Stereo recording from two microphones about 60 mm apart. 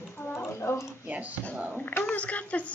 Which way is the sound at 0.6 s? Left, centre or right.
Left.